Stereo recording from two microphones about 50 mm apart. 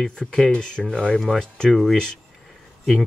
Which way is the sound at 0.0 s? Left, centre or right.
Centre.